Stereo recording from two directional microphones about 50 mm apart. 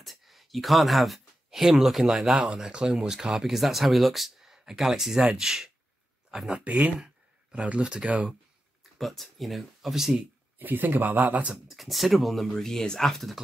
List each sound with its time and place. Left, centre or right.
0.0 s speech: centre
2.5 s speech: centre
6.5 s speech: right
8.9 s speech: centre
10.6 s speech: right
11.6 s speech: centre